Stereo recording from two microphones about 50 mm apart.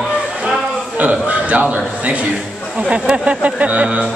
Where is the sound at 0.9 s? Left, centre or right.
Right.